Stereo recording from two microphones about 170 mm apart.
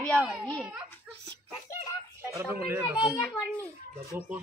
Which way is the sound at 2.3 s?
15° right (ahead or behind).